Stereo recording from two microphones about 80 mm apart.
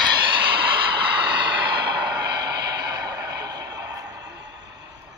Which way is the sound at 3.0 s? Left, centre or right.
Right.